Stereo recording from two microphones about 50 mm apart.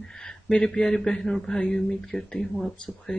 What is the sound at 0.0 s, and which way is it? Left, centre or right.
Speech, centre.